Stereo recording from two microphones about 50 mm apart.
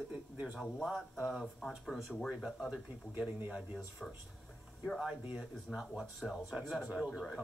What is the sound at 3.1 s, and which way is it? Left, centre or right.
Speech, right.